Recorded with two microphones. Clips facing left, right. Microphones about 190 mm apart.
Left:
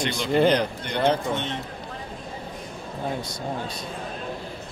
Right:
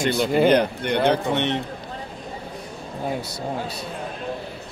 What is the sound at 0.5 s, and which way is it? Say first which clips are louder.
A man's voice: right 4 dB; 55° right (ahead or behind).